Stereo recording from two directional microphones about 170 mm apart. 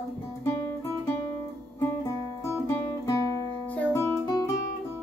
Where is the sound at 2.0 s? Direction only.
15° left (ahead or behind).